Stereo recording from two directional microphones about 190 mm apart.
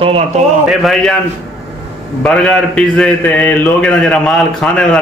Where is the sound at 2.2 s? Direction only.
5° left (ahead or behind).